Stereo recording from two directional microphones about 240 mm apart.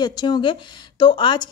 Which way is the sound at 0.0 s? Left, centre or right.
Centre.